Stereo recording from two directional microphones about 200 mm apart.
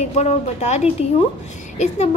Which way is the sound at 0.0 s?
35° left (ahead or behind).